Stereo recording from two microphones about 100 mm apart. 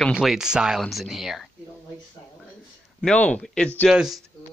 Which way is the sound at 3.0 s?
10° left (ahead or behind).